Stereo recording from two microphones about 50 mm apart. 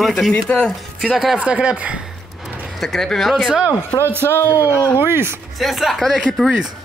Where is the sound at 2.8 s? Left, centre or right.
Centre.